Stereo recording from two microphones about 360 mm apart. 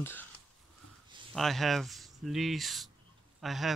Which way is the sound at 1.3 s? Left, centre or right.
Centre.